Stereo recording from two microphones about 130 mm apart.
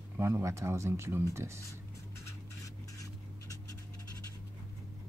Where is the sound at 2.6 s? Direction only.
25° left (ahead or behind).